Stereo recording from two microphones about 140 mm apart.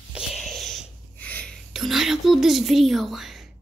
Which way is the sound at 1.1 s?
10° left (ahead or behind).